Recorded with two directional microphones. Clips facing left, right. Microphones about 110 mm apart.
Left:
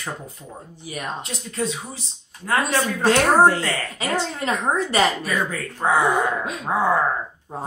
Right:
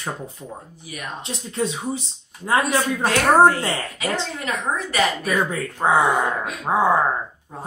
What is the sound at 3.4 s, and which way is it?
Speech, 20° right (ahead or behind).